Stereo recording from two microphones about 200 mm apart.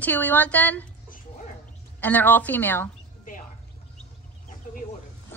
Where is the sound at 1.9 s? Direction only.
10° left (ahead or behind).